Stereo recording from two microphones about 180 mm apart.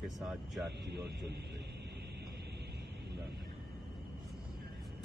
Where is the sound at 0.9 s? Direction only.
70° right (ahead or behind).